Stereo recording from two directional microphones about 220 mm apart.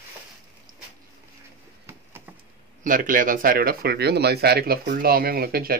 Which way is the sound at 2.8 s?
35° right (ahead or behind).